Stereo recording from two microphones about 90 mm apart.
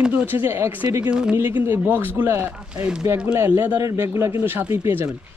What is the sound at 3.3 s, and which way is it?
Speech, 30° right (ahead or behind).